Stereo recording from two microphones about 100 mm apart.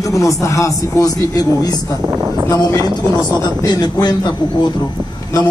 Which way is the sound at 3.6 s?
45° left (ahead or behind).